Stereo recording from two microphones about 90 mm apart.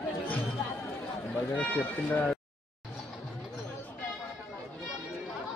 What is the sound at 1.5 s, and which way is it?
Speech, 15° left (ahead or behind).